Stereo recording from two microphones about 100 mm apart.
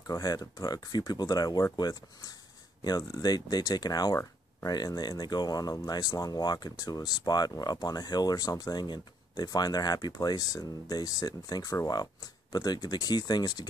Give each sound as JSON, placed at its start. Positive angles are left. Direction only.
{"t": 0.0, "sound": "speech", "side_deg": 40}